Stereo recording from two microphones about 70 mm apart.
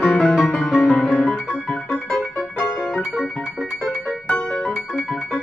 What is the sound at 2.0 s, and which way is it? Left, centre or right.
Music, centre.